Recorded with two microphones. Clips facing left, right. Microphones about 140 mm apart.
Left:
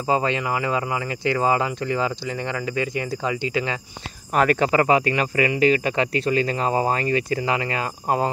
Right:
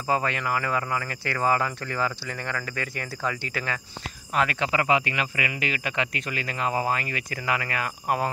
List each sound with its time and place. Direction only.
0.0 s speech: 25° left (ahead or behind)
4.3 s speech: 45° left (ahead or behind); by 8.3 s 25° left (ahead or behind)